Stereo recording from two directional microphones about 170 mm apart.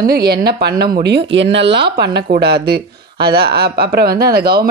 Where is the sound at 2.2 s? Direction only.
70° right (ahead or behind).